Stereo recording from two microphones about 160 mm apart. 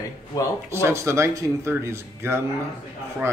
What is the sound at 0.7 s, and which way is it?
Speech, 15° right (ahead or behind).